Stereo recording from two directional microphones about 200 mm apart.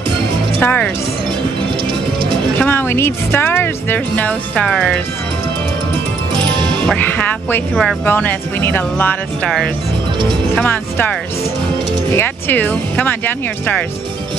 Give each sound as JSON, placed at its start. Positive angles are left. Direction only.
{"t": 0.6, "sound": "speech", "side_deg": 10}
{"t": 2.5, "sound": "speech", "side_deg": 10}
{"t": 6.3, "sound": "music", "side_deg": -20}
{"t": 6.9, "sound": "speech", "side_deg": 10}